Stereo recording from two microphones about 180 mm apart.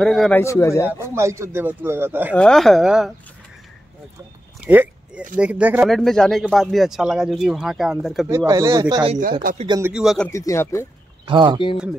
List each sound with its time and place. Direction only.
0.0 s speech: centre (ahead or behind)
0.4 s speech: 15° left (ahead or behind)
0.8 s speech: 15° right (ahead or behind)
2.3 s speech: 5° left (ahead or behind)
4.6 s a sound: 10° right (ahead or behind)
5.4 s speech: 10° right (ahead or behind)
8.3 s speech: 15° right (ahead or behind)
9.2 s speech: 50° right (ahead or behind)
9.7 s speech: 15° right (ahead or behind)
9.9 s speech: centre (ahead or behind)
10.3 s speech: 15° left (ahead or behind)
11.2 s speech: 25° right (ahead or behind)